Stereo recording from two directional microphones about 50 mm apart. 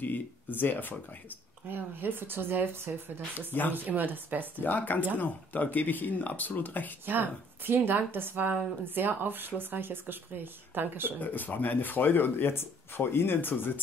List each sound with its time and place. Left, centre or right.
0.0 s speech: left
1.7 s speech: right
3.7 s speech: right
4.6 s speech: left
7.1 s speech: right
11.1 s speech: left